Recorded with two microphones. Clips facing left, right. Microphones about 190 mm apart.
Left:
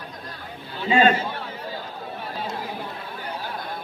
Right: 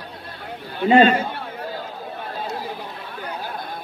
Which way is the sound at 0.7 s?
55° right (ahead or behind).